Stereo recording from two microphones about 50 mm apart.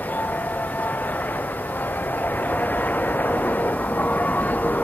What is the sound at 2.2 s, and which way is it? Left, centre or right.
Vehicle, left.